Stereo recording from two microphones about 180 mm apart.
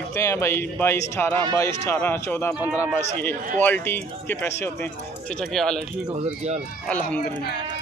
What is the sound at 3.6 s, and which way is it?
A man's voice, 10° left (ahead or behind).